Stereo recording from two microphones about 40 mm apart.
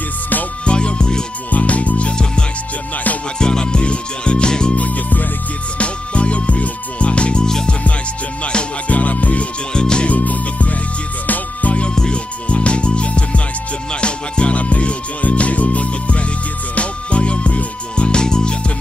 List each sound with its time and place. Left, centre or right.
0.7 s music: left
1.5 s music: left
3.3 s music: centre
4.7 s music: left
5.8 s music: left
8.5 s music: left
8.9 s music: left
9.7 s music: left
10.0 s music: left
11.7 s music: left